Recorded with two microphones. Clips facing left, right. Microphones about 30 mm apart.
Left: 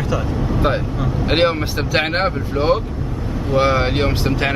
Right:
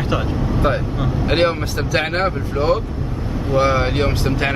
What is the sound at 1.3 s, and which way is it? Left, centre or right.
Speech, centre.